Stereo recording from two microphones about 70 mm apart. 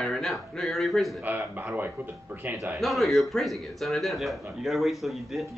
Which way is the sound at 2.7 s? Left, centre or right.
Centre.